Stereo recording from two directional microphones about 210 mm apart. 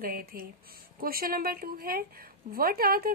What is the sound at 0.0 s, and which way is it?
Speech, 45° right (ahead or behind).